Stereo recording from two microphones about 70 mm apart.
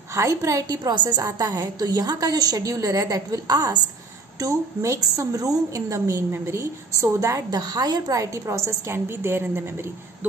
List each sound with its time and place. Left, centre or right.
0.1 s a woman's voice: right
4.4 s a woman's voice: right
7.5 s a woman's voice: right
8.2 s a woman's voice: right